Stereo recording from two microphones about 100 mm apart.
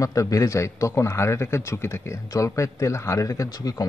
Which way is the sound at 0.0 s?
35° left (ahead or behind).